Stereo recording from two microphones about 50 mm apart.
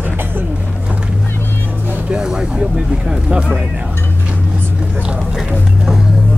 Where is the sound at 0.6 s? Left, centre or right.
Right.